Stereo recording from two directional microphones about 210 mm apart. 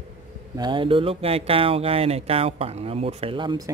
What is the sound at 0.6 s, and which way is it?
Speech, 20° right (ahead or behind).